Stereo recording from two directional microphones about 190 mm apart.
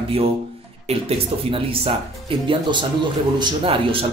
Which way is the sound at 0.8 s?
30° right (ahead or behind).